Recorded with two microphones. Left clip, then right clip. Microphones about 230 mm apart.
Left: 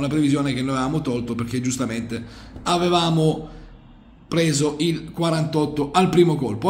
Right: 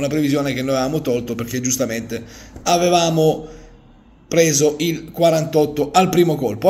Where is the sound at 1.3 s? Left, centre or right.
Centre.